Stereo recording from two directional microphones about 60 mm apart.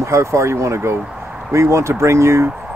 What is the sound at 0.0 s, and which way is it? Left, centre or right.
Speech, right.